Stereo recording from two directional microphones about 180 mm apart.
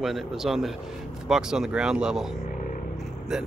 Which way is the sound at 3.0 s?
Centre (ahead or behind).